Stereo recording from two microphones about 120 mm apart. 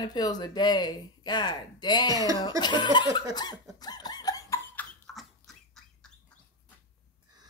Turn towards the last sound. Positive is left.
turn(degrees=0)  # may be behind; listen again after turning